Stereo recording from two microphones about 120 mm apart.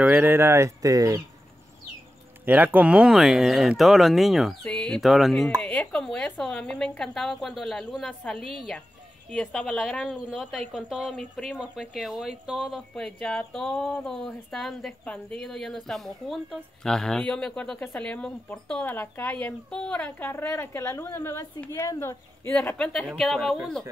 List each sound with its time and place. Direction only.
0.0 s speech: 15° right (ahead or behind)
2.4 s speech: 15° right (ahead or behind)
5.5 s speech: 10° left (ahead or behind)